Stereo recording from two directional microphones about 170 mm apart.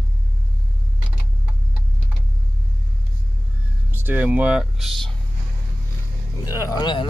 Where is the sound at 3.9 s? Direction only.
10° right (ahead or behind).